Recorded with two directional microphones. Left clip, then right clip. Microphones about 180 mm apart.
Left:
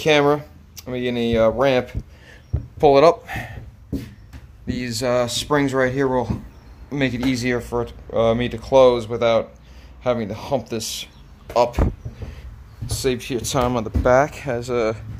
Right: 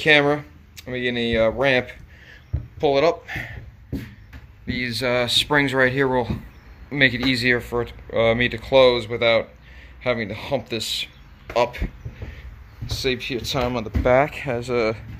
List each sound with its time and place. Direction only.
0.0 s speech: 5° left (ahead or behind)
2.8 s speech: 20° left (ahead or behind)
3.3 s speech: 5° left (ahead or behind)
4.6 s speech: 10° left (ahead or behind)
12.8 s speech: 15° left (ahead or behind)
13.8 s speech: centre (ahead or behind)